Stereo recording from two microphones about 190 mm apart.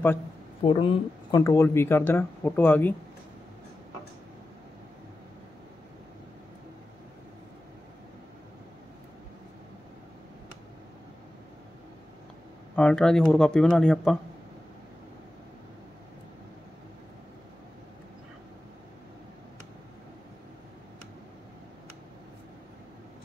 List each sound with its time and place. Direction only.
0.6 s speech: 30° left (ahead or behind)
1.4 s speech: 15° left (ahead or behind)
12.7 s speech: 5° left (ahead or behind)